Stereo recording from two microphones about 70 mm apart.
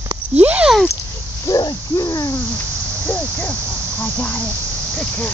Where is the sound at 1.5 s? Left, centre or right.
Left.